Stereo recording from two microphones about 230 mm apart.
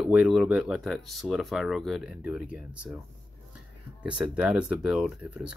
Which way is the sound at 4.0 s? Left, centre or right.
Centre.